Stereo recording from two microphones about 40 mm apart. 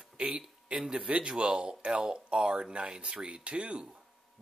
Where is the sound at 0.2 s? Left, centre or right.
Right.